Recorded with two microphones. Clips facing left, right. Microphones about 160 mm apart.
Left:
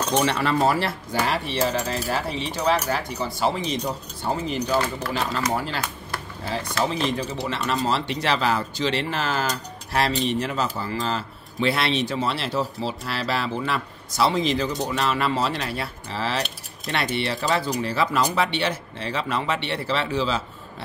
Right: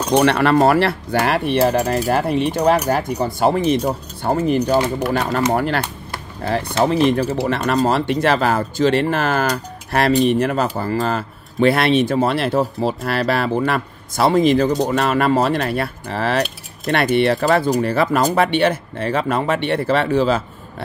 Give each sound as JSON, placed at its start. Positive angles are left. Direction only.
{"t": 0.2, "sound": "speech", "side_deg": -65}
{"t": 5.5, "sound": "speech", "side_deg": -60}